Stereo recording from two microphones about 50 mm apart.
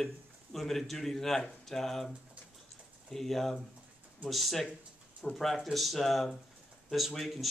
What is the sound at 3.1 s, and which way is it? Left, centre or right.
Speech, centre.